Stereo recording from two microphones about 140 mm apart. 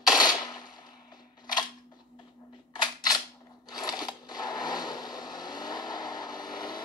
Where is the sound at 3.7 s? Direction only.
30° left (ahead or behind).